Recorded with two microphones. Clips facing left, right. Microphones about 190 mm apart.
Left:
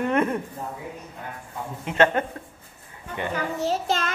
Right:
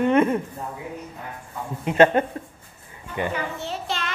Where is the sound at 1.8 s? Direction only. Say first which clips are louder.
Right 4 dB; 15° right (ahead or behind).